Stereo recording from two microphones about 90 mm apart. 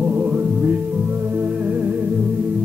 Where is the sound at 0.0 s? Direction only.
15° right (ahead or behind).